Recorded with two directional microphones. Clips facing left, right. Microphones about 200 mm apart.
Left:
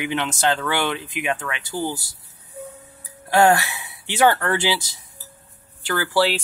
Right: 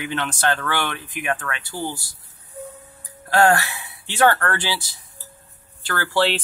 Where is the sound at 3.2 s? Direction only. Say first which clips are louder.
Left 1 dB; 15° left (ahead or behind).